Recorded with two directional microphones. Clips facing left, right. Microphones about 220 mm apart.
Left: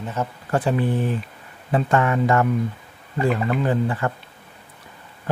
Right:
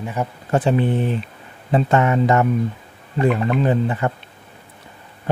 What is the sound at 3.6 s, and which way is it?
Speech, 20° right (ahead or behind).